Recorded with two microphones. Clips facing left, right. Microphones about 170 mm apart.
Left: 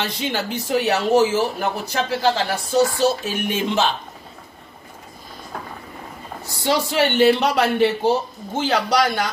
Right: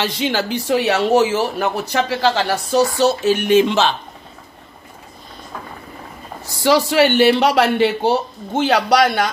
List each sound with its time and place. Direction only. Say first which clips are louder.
0.0 s speech: right 4 dB; 90° right
6.6 s speech: right 5 dB; 90° right; by 9.3 s 65° right (ahead or behind)